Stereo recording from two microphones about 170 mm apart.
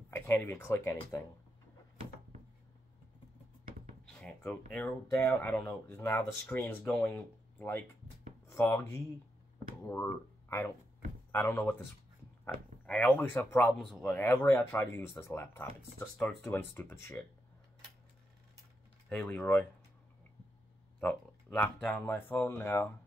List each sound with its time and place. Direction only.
0.1 s speech: 10° left (ahead or behind)
4.0 s drawer open or close: 5° left (ahead or behind)
4.7 s speech: 10° left (ahead or behind)
11.3 s speech: 10° left (ahead or behind)
12.8 s speech: 5° left (ahead or behind)
19.0 s speech: 5° left (ahead or behind)
21.0 s speech: 10° left (ahead or behind)